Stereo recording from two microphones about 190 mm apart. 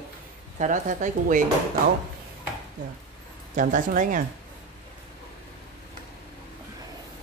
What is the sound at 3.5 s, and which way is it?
Speech, 45° right (ahead or behind).